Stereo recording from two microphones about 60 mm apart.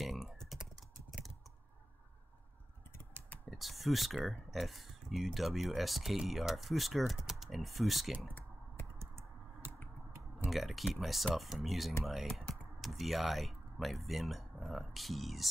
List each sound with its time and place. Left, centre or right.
0.0 s computer keyboard: centre
3.4 s speech: centre
9.0 s computer keyboard: right
10.5 s speech: centre